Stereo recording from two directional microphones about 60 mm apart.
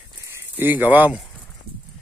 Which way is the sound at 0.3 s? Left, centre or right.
Right.